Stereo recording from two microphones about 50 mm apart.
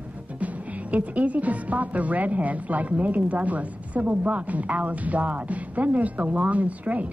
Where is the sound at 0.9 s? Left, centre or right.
Right.